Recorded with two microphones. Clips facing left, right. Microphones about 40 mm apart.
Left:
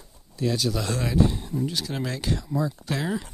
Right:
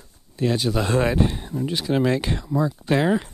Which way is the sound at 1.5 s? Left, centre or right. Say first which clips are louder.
Right 6 dB; right.